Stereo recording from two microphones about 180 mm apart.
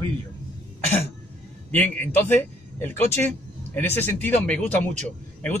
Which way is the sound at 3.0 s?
35° right (ahead or behind).